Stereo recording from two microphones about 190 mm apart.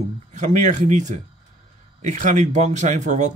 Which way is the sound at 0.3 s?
40° right (ahead or behind).